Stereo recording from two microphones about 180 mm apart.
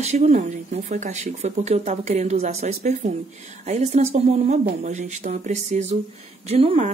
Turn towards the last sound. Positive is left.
turn(degrees=-35)  # may be behind; listen again after turning